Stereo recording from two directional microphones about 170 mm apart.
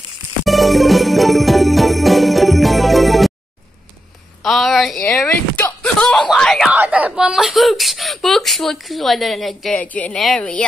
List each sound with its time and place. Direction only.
0.5 s jingle bell: centre (ahead or behind)
4.4 s speech: centre (ahead or behind)
6.7 s speech: 10° right (ahead or behind)